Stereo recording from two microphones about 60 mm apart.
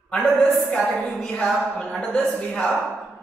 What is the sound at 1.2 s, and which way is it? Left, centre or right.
A woman's voice, centre.